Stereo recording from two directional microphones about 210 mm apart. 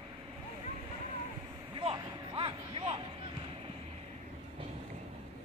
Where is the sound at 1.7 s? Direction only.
25° right (ahead or behind).